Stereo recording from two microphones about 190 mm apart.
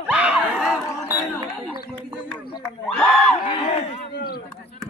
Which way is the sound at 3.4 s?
30° left (ahead or behind).